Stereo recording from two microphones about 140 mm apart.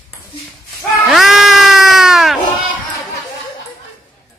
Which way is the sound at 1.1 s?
5° right (ahead or behind).